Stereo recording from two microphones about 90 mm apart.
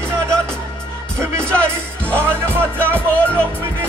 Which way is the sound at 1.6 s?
15° left (ahead or behind).